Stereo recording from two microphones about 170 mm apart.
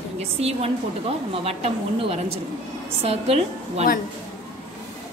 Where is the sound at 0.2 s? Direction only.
35° right (ahead or behind).